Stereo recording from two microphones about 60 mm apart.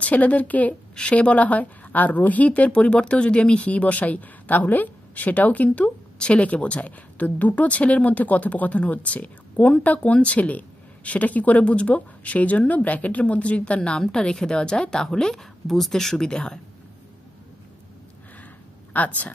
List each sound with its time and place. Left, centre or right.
0.0 s a woman's voice: left
18.9 s a woman's voice: left